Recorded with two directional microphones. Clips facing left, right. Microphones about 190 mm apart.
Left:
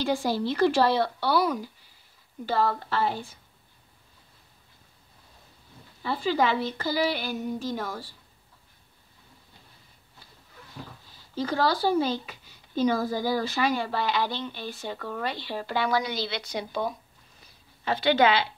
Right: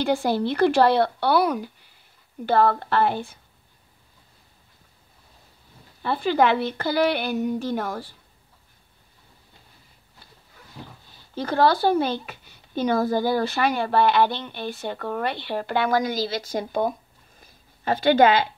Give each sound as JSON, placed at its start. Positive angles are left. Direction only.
{"t": 0.0, "sound": "speech", "side_deg": -60}
{"t": 6.0, "sound": "speech", "side_deg": -60}
{"t": 11.3, "sound": "speech", "side_deg": -60}
{"t": 17.4, "sound": "a sound", "side_deg": -45}